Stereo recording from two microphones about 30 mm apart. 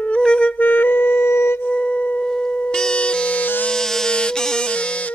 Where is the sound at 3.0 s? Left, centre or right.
Left.